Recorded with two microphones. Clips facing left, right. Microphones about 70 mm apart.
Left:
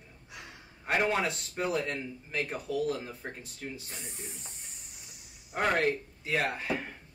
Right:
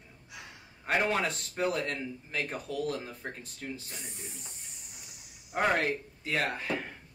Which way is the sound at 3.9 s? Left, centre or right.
Left.